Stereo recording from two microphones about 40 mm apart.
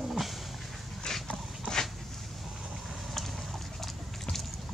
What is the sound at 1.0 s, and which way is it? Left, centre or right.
Dog, left.